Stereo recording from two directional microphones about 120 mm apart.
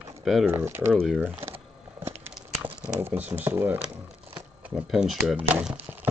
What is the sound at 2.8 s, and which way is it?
Speech, 15° right (ahead or behind).